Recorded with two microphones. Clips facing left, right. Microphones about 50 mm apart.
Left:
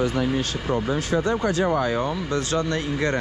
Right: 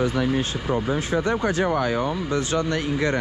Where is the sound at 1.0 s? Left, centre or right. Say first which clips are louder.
Even; right.